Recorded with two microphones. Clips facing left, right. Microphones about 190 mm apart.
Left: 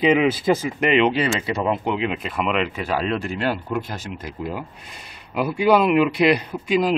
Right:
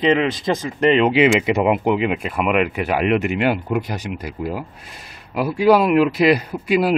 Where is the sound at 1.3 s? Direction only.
15° right (ahead or behind).